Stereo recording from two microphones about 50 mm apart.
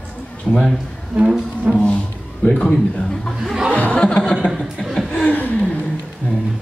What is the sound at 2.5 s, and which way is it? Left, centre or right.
Speech, centre.